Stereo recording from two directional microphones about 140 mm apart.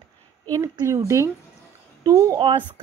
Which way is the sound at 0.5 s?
25° right (ahead or behind).